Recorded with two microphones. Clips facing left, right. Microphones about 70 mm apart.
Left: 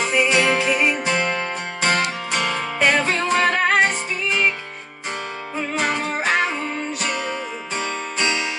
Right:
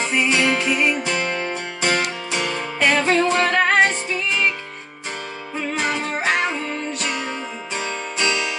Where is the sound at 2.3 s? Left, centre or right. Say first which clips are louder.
Left 2 dB; left.